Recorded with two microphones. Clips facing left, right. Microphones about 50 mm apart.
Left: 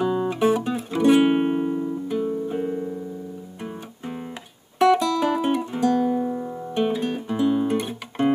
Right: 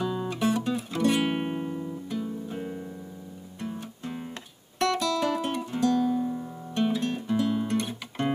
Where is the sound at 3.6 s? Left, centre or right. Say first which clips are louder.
Even; centre.